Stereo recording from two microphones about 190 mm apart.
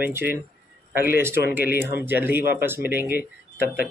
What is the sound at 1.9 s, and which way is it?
Speech, 10° right (ahead or behind).